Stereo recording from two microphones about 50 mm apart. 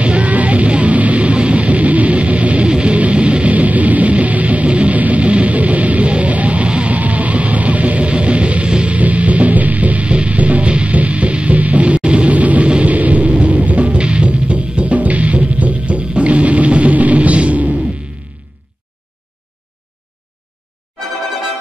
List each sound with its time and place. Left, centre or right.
0.0 s music: right